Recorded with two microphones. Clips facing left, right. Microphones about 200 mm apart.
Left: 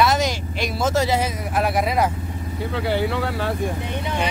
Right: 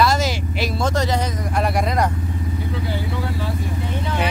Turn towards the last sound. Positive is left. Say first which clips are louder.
# left 3 dB
turn(degrees=65)  # may be behind; listen again after turning